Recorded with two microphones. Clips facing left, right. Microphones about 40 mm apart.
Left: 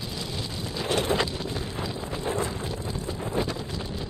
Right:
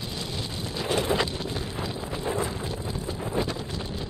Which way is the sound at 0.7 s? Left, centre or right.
Centre.